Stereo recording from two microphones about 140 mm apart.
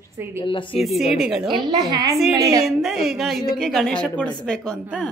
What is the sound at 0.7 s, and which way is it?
Speech, centre (ahead or behind).